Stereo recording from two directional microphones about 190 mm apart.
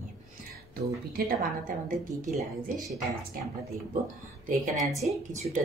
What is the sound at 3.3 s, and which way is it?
Speech, 50° right (ahead or behind).